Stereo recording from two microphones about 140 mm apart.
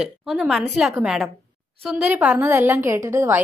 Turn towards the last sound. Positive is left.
turn(degrees=-20)  # may be behind; listen again after turning